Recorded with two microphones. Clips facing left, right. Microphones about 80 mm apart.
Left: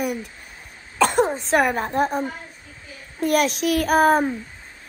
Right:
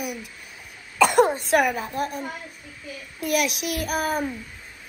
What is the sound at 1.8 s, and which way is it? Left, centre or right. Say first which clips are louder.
Speech: left 6 dB; left.